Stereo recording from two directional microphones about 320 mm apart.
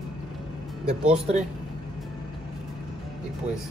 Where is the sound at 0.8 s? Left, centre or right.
Centre.